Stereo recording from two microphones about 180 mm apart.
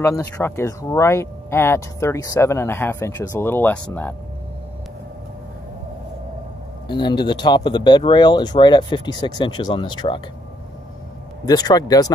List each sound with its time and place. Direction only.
0.1 s speech: 15° left (ahead or behind)
6.9 s speech: 25° left (ahead or behind)
11.4 s speech: 20° left (ahead or behind)